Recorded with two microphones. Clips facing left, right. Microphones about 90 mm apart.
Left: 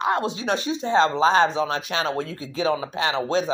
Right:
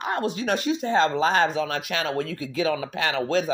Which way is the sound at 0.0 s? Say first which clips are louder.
Left 3 dB; 25° left (ahead or behind).